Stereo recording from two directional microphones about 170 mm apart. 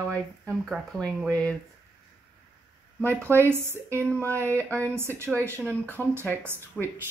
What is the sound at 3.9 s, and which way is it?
Speech, 10° left (ahead or behind).